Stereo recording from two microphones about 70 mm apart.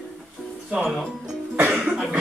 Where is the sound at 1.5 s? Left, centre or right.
Right.